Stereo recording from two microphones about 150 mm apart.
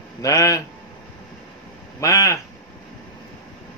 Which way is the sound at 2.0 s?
20° left (ahead or behind).